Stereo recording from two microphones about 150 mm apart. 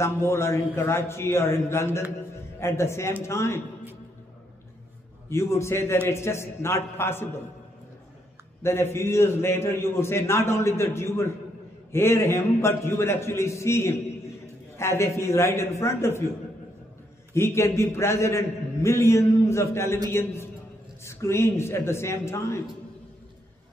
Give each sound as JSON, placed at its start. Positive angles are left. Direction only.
{"t": 0.0, "sound": "a man's voice", "side_deg": 15}
{"t": 5.3, "sound": "a man's voice", "side_deg": 20}
{"t": 8.9, "sound": "a man's voice", "side_deg": 15}
{"t": 17.3, "sound": "a man's voice", "side_deg": 15}